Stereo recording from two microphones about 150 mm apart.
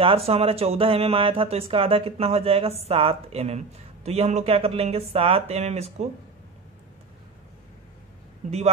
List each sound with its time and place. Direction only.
0.0 s speech: 40° right (ahead or behind)